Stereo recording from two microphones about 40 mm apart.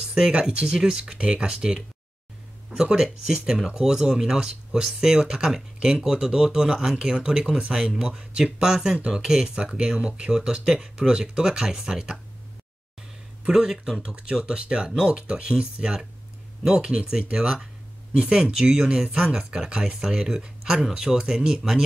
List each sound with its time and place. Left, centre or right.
0.1 s speech: right
13.4 s speech: right
18.9 s speech: right